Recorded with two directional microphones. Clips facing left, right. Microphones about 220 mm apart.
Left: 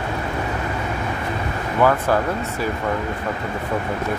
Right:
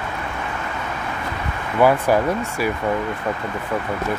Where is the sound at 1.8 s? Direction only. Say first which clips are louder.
Right 2 dB; 10° right (ahead or behind).